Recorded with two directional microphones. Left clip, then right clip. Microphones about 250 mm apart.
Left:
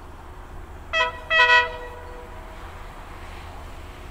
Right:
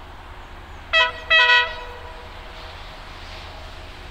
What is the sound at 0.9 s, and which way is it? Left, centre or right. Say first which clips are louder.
Vehicle: right 4 dB; centre.